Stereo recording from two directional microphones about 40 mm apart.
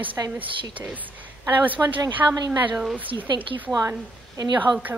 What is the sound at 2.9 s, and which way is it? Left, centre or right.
Speech, right.